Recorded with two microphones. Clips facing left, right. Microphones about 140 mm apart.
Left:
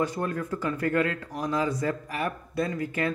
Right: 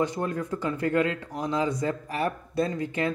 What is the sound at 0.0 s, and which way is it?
Speech, 20° right (ahead or behind).